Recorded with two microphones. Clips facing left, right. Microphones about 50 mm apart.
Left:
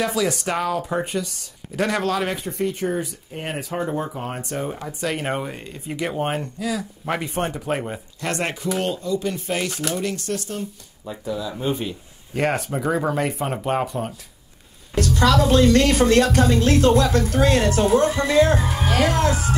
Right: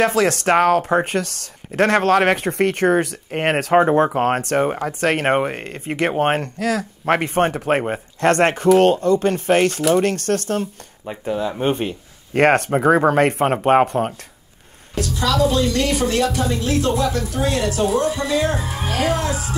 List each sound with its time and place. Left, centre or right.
0.0 s speech: right
1.7 s speech: right
4.6 s speech: right
15.0 s speech: left